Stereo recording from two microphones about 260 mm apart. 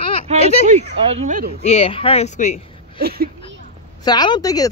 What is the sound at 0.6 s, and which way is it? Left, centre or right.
Speech, right.